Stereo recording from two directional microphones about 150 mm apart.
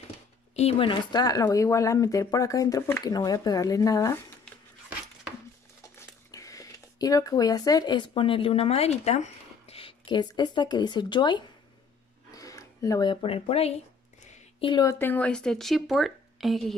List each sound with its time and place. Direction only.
0.6 s speech: 40° left (ahead or behind); by 4.2 s 25° left (ahead or behind)
5.9 s speech: 20° left (ahead or behind); by 13.7 s 45° left (ahead or behind)
14.6 s speech: 30° left (ahead or behind)
15.0 s a woman's voice: 10° left (ahead or behind)